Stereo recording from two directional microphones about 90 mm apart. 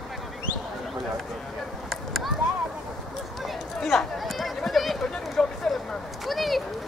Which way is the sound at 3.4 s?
Centre (ahead or behind).